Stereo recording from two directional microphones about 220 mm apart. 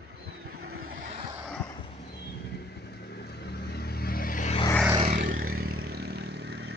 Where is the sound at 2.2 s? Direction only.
45° left (ahead or behind).